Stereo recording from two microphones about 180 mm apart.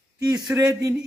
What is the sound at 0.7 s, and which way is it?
Speech, 15° right (ahead or behind).